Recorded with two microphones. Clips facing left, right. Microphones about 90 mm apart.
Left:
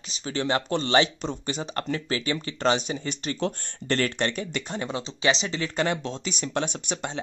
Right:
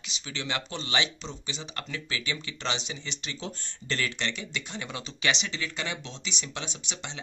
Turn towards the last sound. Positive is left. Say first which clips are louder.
# left 9 dB
turn(degrees=45)  # may be behind; listen again after turning